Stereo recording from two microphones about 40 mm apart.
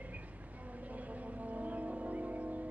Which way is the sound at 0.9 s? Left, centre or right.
Right.